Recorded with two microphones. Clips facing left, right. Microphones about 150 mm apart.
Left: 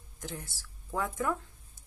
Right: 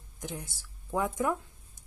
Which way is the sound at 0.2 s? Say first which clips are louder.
Right 2 dB; 15° right (ahead or behind).